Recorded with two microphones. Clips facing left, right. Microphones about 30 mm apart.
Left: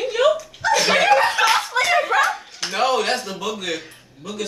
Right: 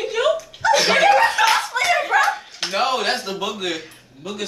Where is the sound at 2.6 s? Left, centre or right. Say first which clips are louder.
Left 1 dB; centre.